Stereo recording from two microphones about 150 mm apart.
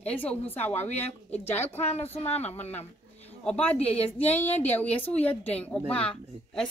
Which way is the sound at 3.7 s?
45° left (ahead or behind).